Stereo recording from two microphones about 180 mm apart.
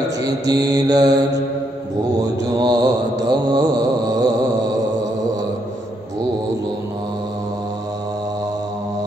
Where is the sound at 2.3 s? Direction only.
20° right (ahead or behind).